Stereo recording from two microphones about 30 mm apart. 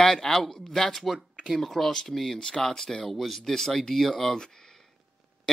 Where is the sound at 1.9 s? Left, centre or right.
Left.